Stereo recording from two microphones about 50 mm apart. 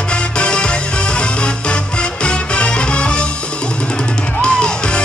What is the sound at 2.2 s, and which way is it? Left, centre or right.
Music, left.